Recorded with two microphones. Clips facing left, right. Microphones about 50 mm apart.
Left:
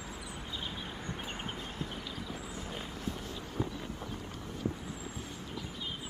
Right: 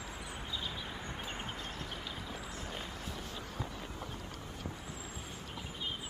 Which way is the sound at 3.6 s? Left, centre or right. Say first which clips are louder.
Left 8 dB; left.